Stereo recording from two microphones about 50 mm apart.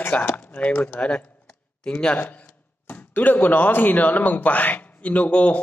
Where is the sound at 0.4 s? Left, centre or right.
Left.